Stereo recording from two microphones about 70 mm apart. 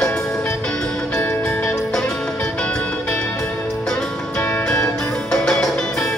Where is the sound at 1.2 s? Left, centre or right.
Centre.